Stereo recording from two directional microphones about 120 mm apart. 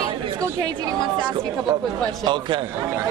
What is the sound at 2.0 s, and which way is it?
Speech, 40° right (ahead or behind).